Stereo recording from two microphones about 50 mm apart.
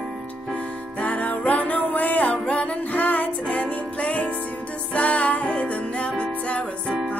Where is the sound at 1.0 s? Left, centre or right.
Left.